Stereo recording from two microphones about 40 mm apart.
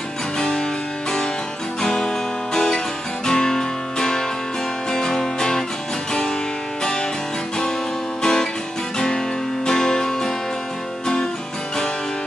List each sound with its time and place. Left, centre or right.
0.4 s music: centre
1.8 s music: centre
6.8 s music: centre
8.2 s music: centre
8.9 s guitar: centre
9.7 s music: centre